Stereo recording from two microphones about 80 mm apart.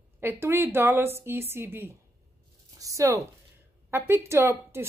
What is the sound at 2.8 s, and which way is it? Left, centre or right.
A woman's voice, right.